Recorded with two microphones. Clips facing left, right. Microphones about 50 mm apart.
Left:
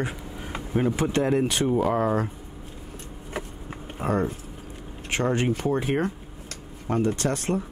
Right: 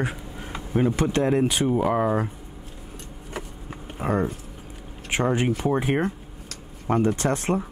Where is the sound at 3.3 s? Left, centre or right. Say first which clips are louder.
Left 1 dB; centre.